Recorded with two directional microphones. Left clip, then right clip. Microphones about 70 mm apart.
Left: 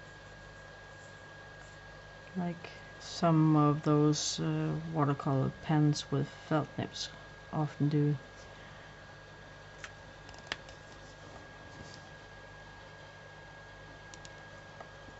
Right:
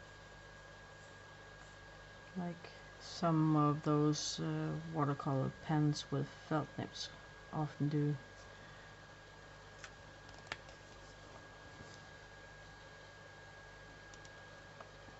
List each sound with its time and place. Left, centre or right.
2.4 s speech: centre
3.4 s speech: centre